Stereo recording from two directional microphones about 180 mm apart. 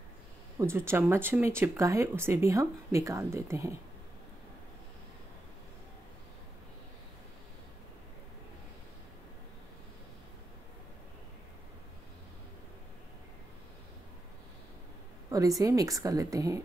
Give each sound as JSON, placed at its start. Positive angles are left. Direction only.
{"t": 0.6, "sound": "speech", "side_deg": -15}
{"t": 15.2, "sound": "speech", "side_deg": -20}